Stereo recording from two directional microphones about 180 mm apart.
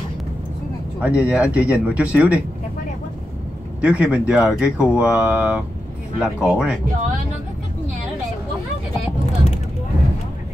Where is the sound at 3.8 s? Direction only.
5° right (ahead or behind).